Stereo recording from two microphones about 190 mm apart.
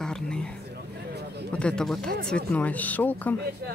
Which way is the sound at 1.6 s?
5° left (ahead or behind).